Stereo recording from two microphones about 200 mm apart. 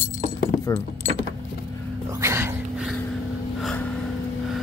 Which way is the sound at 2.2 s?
15° right (ahead or behind).